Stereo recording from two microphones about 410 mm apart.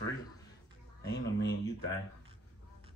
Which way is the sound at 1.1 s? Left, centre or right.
Left.